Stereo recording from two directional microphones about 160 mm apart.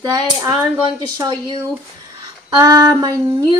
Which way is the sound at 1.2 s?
25° right (ahead or behind).